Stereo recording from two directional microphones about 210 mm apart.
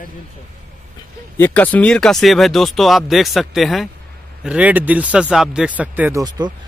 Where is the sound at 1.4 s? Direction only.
10° left (ahead or behind); by 6.2 s 10° right (ahead or behind).